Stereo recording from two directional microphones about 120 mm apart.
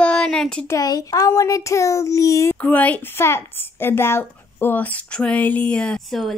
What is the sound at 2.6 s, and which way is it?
A woman's voice, 15° left (ahead or behind).